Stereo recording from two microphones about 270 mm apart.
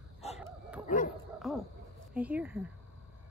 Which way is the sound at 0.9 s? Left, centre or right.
Left.